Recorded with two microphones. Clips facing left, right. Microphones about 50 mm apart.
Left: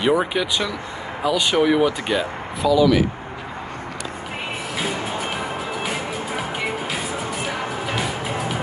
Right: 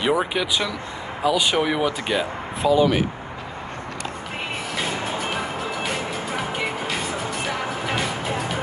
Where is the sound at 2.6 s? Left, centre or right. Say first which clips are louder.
Left 2 dB; right.